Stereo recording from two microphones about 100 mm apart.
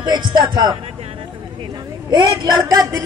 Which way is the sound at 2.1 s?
50° right (ahead or behind).